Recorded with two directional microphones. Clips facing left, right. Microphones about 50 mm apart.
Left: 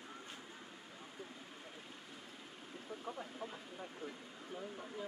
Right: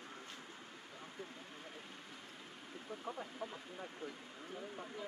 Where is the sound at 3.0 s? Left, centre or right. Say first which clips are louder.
Right 1 dB; centre.